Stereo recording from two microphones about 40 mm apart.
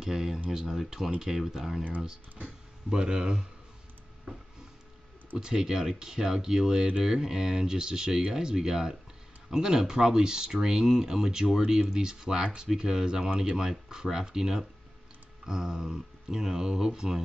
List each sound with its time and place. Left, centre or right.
0.0 s speech: centre
2.9 s speech: centre
5.4 s speech: centre